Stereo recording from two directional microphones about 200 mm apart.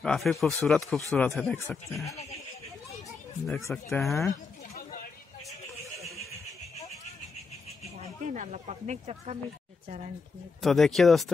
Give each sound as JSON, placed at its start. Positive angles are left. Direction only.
{"t": 0.0, "sound": "speech", "side_deg": 0}
{"t": 3.6, "sound": "speech", "side_deg": 5}
{"t": 8.0, "sound": "speech", "side_deg": -35}
{"t": 10.6, "sound": "speech", "side_deg": 0}